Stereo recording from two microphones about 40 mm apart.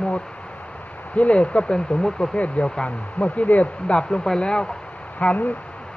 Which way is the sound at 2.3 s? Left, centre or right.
Left.